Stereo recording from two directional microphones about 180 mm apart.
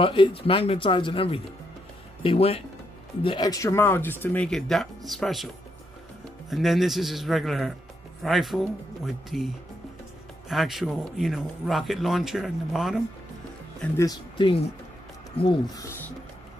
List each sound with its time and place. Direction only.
0.0 s speech: 30° left (ahead or behind)
3.3 s speech: 20° left (ahead or behind); by 5.5 s centre (ahead or behind)
6.5 s speech: centre (ahead or behind)
10.5 s speech: centre (ahead or behind)
13.9 s speech: 20° left (ahead or behind)